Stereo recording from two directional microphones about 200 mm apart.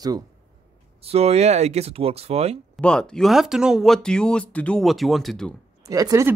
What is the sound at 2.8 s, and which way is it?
Speech, 5° left (ahead or behind).